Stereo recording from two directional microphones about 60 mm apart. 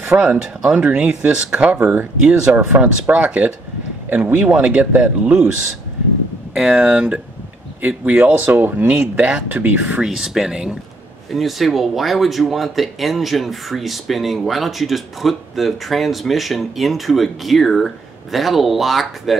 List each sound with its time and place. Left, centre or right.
0.1 s speech: centre; by 4.5 s right
4.5 s speech: right
6.6 s speech: centre
9.0 s speech: centre
10.0 s speech: centre